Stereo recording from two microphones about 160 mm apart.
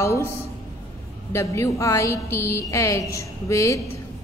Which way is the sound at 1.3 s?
20° left (ahead or behind).